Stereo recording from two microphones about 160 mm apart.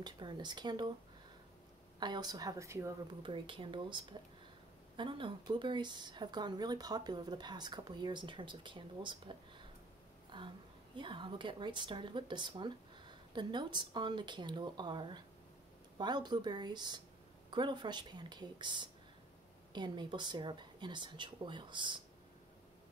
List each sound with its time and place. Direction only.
0.0 s speech: 30° right (ahead or behind)
2.0 s speech: 25° right (ahead or behind)
3.1 s speech: 30° right (ahead or behind)